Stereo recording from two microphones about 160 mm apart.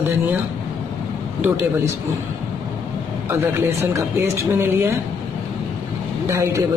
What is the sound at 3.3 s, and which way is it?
Speech, 15° right (ahead or behind).